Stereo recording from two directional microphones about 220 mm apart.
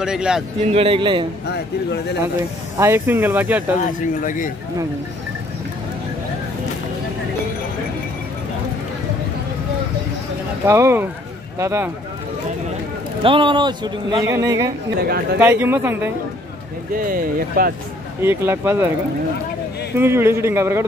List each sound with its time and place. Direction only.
0.0 s speech: 5° right (ahead or behind)
0.7 s a man's voice: 25° right (ahead or behind)
2.8 s speech: 10° right (ahead or behind)
4.2 s speech: 35° left (ahead or behind)
10.6 s speech: 10° right (ahead or behind)
13.2 s a man's voice: 20° right (ahead or behind)
15.0 s speech: 45° right (ahead or behind)
15.3 s speech: 10° right (ahead or behind)
16.9 s speech: 40° right (ahead or behind)
18.2 s speech: 10° right (ahead or behind)
20.0 s speech: 10° right (ahead or behind)